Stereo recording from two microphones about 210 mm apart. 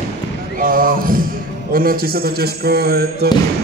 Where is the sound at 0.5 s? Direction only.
40° right (ahead or behind).